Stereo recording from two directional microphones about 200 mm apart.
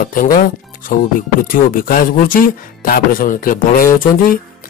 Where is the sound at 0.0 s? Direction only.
45° left (ahead or behind).